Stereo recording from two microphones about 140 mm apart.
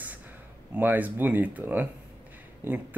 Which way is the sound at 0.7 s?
10° right (ahead or behind).